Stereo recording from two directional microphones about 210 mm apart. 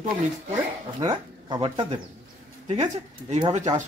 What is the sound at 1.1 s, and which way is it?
Speech, 20° right (ahead or behind).